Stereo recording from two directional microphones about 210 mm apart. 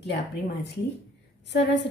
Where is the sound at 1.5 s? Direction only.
55° left (ahead or behind).